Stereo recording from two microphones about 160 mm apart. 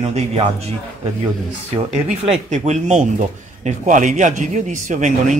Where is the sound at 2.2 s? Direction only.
40° right (ahead or behind).